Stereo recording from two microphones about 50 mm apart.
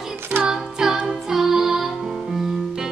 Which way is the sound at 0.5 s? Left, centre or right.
Centre.